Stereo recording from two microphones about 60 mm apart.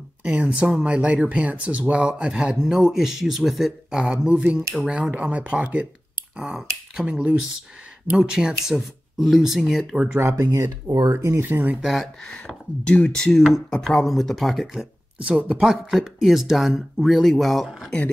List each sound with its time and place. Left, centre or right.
0.2 s speech: right; by 3.7 s centre
3.9 s speech: centre
10.5 s speech: right
11.1 s speech: right
11.4 s speech: right
11.7 s speech: centre
12.8 s speech: centre
15.1 s speech: right
15.5 s speech: centre